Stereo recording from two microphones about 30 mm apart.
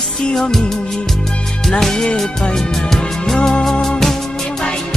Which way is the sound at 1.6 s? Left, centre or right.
Centre.